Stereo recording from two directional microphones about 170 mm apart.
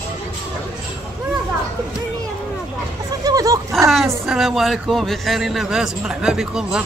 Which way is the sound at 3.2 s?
20° right (ahead or behind).